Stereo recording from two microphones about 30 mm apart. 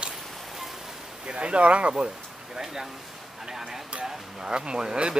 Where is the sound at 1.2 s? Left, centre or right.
Right.